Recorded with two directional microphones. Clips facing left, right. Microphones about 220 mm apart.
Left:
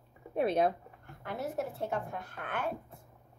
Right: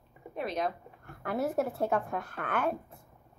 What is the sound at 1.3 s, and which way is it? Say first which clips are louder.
A woman's voice: right 6 dB; 70° right (ahead or behind).